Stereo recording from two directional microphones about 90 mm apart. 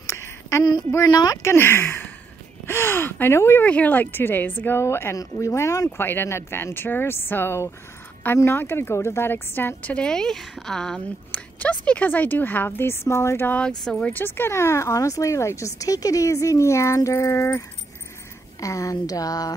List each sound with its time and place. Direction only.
0.0 s a sound: 30° left (ahead or behind)
0.9 s speech: 45° left (ahead or behind)
1.4 s speech: 25° left (ahead or behind)
3.6 s speech: 15° left (ahead or behind); by 5.9 s 35° left (ahead or behind)
5.9 s speech: 25° left (ahead or behind)
13.6 s speech: 10° left (ahead or behind)
14.1 s speech: 25° left (ahead or behind); by 19.5 s 45° left (ahead or behind)